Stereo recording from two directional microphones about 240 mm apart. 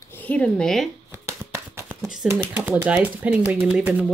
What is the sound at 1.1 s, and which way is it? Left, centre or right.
Shuffling cards, centre.